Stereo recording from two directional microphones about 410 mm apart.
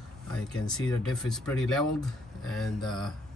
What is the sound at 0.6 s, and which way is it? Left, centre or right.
Speech, centre.